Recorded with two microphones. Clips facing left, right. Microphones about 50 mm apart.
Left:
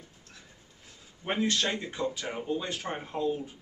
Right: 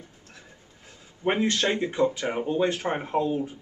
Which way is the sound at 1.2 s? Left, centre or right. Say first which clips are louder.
Right 5 dB; right.